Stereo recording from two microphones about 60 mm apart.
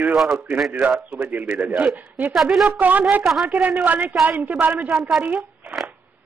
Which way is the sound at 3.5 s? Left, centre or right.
Right.